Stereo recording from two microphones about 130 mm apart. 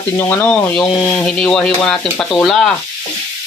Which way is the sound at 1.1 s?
5° left (ahead or behind).